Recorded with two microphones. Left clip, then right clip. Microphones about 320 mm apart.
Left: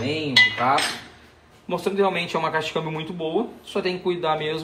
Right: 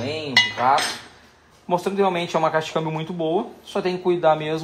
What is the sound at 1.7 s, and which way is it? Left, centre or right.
Speech, centre.